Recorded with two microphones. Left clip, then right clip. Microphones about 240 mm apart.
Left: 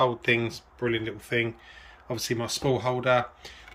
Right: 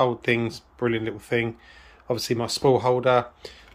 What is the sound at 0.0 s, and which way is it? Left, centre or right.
Speech, centre.